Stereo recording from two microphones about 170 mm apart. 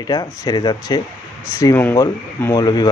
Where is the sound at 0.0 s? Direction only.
20° left (ahead or behind).